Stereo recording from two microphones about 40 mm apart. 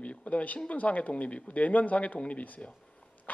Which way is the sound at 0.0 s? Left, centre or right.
Left.